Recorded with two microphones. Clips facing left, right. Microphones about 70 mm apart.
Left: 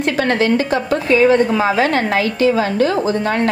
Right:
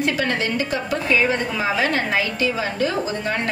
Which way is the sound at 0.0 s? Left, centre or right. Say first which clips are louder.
Left 6 dB; left.